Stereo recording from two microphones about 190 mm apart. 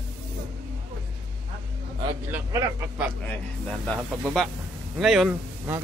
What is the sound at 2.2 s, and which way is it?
Speech, 10° right (ahead or behind).